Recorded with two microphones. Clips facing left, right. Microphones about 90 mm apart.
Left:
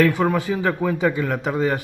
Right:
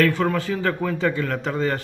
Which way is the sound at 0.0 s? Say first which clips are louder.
Left 2 dB; 15° left (ahead or behind).